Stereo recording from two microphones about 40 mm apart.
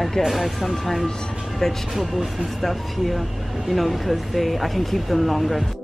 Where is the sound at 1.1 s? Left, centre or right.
Centre.